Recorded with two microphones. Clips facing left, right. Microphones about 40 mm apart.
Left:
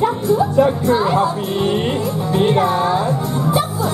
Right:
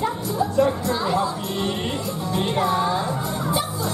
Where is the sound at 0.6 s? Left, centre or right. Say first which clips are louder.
Left 3 dB; left.